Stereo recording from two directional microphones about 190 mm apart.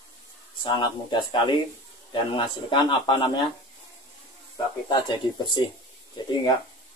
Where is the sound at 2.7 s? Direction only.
25° left (ahead or behind).